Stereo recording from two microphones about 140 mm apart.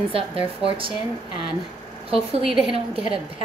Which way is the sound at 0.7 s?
40° right (ahead or behind).